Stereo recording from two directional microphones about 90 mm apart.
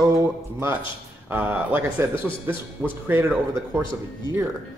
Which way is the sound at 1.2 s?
15° right (ahead or behind).